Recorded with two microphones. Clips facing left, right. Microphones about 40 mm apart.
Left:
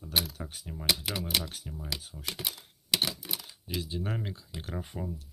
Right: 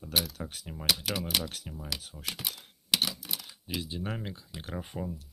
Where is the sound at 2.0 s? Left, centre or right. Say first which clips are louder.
Right 1 dB; right.